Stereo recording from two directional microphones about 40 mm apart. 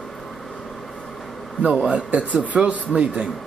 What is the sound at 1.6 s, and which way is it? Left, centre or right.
A man's voice, right.